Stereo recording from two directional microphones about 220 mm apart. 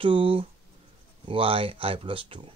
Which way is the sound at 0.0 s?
25° right (ahead or behind).